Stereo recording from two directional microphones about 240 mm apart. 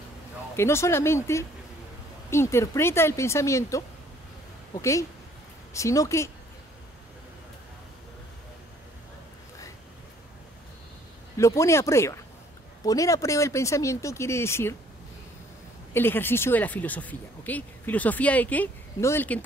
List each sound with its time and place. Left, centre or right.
0.6 s speech: centre
11.3 s speech: centre
15.9 s speech: centre